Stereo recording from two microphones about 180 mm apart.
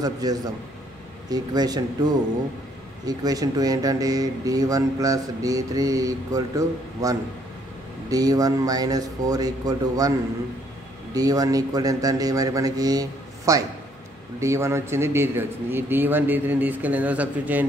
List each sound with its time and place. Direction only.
0.0 s speech: 20° right (ahead or behind)
11.1 s a man's voice: 20° right (ahead or behind)